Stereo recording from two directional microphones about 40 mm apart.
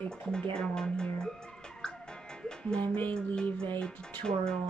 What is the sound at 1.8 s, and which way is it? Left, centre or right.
Music, centre.